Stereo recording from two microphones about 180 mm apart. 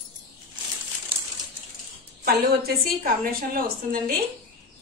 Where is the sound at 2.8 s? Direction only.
55° right (ahead or behind).